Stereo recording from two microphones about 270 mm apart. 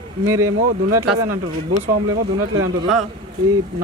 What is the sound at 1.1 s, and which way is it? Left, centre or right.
Speech, right.